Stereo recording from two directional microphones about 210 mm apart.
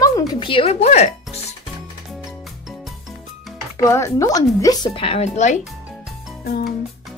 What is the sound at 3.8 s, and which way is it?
A woman's voice, 15° left (ahead or behind).